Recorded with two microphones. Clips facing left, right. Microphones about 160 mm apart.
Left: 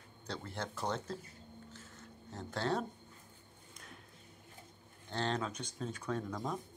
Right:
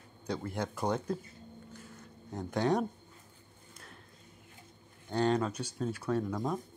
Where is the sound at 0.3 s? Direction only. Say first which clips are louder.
Right 7 dB; 10° right (ahead or behind).